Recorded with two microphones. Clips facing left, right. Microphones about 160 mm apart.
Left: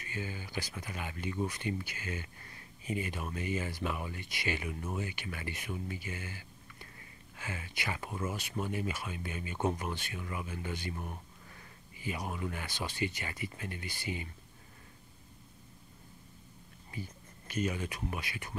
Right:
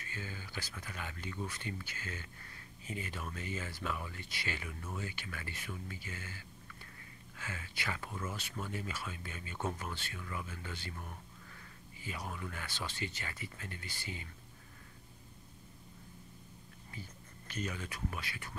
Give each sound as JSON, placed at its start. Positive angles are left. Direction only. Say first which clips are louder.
{"t": 0.0, "sound": "speech", "louder": "left 5 dB", "side_deg": 15}
{"t": 17.5, "sound": "speech", "louder": "left 6 dB", "side_deg": 10}